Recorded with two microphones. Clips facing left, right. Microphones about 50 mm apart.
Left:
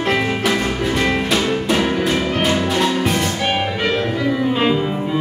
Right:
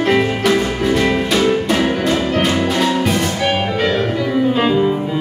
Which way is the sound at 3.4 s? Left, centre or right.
Centre.